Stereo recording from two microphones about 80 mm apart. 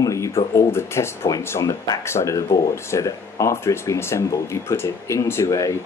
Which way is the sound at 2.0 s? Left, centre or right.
Left.